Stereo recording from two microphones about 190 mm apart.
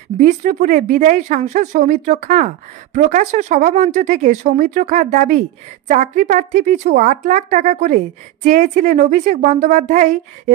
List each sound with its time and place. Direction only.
0.2 s speech: 40° right (ahead or behind)